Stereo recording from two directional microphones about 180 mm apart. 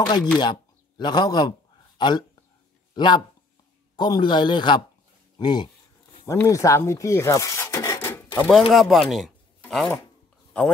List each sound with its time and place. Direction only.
0.4 s speech: 25° left (ahead or behind)
2.9 s a sound: 25° left (ahead or behind)
3.9 s a man's voice: 25° left (ahead or behind)
8.4 s speech: centre (ahead or behind)
9.1 s a sound: centre (ahead or behind)
10.5 s speech: 10° left (ahead or behind)